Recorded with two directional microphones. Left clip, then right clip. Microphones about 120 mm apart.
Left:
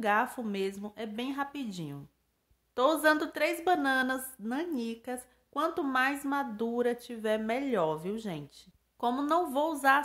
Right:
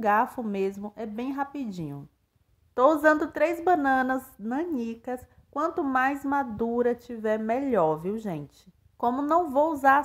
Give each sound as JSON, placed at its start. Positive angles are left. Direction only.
{"t": 0.0, "sound": "a woman's voice", "side_deg": -45}